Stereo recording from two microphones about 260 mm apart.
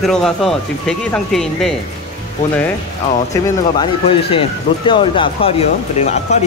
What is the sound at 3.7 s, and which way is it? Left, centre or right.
Speech, centre.